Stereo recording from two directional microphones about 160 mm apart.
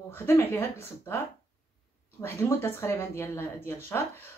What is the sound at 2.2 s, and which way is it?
Speech, 15° left (ahead or behind).